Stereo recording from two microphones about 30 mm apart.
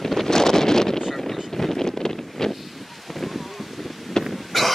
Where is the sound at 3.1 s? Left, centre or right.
Centre.